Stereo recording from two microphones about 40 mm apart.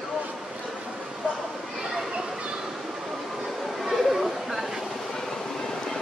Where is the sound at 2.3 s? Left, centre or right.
Right.